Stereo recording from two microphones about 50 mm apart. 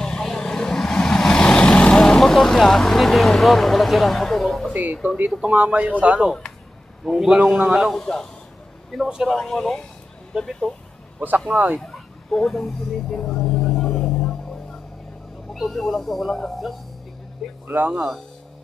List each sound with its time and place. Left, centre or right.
0.0 s vehicle: centre
3.3 s speech: centre
5.0 s a man's voice: right
7.1 s a man's voice: centre
8.0 s speech: centre
11.1 s a man's voice: right
11.8 s vehicle: centre
13.8 s music: left
15.5 s speech: centre
17.6 s speech: right
17.9 s speech: centre